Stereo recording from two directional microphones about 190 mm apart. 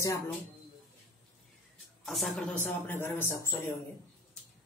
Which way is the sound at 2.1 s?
5° left (ahead or behind).